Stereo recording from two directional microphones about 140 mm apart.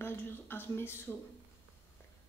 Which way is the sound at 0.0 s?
15° left (ahead or behind).